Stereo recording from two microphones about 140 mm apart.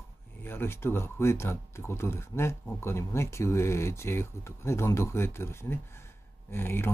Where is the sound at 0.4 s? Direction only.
15° left (ahead or behind).